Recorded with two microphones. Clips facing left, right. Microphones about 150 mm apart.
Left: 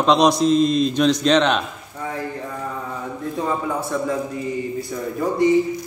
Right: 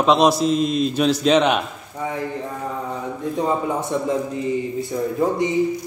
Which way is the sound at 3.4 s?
20° right (ahead or behind).